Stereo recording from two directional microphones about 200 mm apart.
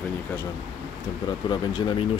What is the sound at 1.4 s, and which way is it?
Speech, 20° left (ahead or behind).